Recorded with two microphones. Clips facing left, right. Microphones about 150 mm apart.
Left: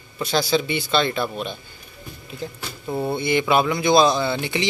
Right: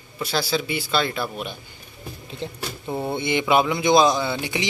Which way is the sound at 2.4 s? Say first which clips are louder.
Even; 30° right (ahead or behind).